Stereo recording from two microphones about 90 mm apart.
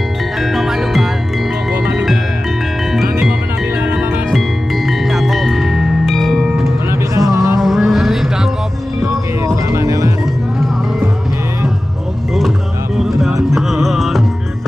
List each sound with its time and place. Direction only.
0.4 s music: centre (ahead or behind)
2.9 s music: 5° right (ahead or behind)
4.3 s music: centre (ahead or behind)
6.9 s music: 40° right (ahead or behind)
7.6 s music: centre (ahead or behind)
9.7 s music: 35° right (ahead or behind)
12.4 s music: 5° right (ahead or behind)